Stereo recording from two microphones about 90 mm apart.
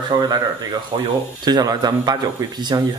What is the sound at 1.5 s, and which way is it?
Speech, 45° right (ahead or behind).